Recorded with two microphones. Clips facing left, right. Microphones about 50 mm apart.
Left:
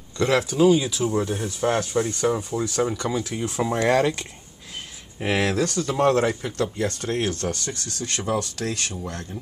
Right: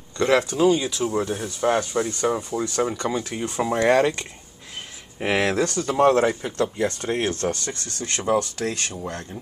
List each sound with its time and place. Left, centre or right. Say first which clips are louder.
0.2 s speech: even; centre
5.5 s speech: right 1 dB; right
5.9 s speech: right 3 dB; centre